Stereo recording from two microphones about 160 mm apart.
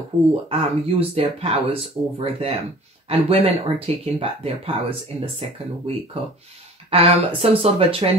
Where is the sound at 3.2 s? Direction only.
40° right (ahead or behind).